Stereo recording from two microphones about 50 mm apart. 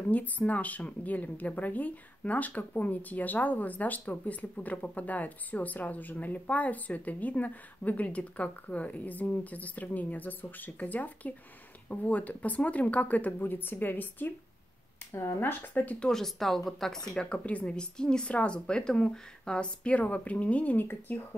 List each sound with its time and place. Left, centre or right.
0.1 s speech: left
15.1 s speech: left
15.6 s speech: left
16.0 s speech: centre
17.3 s a woman's voice: left
20.7 s speech: left